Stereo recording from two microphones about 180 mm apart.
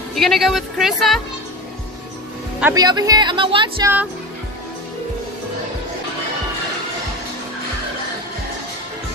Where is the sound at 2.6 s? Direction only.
20° right (ahead or behind).